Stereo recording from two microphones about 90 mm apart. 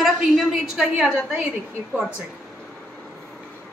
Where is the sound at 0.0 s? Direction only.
5° right (ahead or behind).